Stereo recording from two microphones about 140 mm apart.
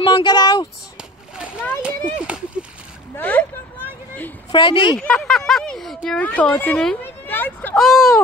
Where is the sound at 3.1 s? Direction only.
10° left (ahead or behind).